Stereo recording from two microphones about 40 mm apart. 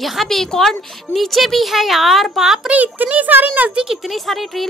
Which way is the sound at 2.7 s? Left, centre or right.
Right.